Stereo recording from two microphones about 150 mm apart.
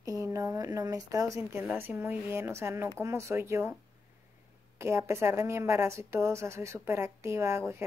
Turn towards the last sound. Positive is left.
turn(degrees=-20)  # may be behind; listen again after turning